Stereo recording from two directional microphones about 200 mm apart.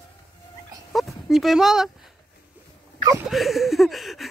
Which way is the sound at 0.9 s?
Centre (ahead or behind).